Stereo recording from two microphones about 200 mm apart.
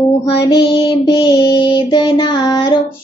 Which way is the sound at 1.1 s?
25° left (ahead or behind).